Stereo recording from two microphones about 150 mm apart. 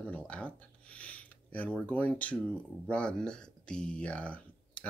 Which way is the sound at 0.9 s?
10° left (ahead or behind).